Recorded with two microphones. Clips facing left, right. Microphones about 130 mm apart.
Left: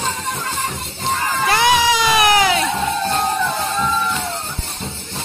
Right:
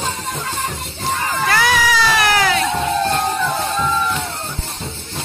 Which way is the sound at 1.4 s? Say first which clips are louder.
Left 2 dB; 20° left (ahead or behind).